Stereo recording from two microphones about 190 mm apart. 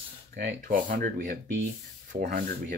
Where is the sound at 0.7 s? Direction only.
45° right (ahead or behind).